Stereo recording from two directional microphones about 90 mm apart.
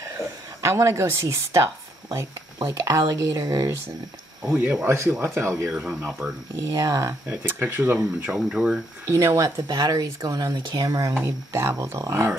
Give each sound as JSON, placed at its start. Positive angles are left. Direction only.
{"t": 0.0, "sound": "speech", "side_deg": -30}
{"t": 4.5, "sound": "speech", "side_deg": -25}
{"t": 5.7, "sound": "speech", "side_deg": -10}
{"t": 6.5, "sound": "speech", "side_deg": -35}
{"t": 7.2, "sound": "speech", "side_deg": -25}
{"t": 8.3, "sound": "speech", "side_deg": -10}
{"t": 9.0, "sound": "speech", "side_deg": -35}
{"t": 11.1, "sound": "speech", "side_deg": -30}